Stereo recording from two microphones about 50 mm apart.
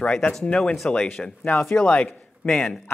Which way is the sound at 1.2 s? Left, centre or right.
Centre.